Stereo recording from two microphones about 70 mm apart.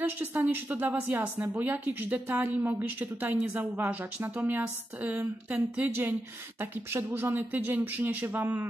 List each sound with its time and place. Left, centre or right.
0.0 s a woman's voice: right